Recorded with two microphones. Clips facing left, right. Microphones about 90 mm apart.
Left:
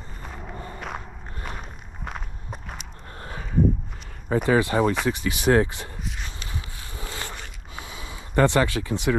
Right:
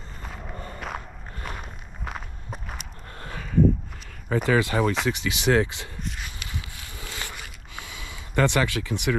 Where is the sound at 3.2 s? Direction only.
35° left (ahead or behind).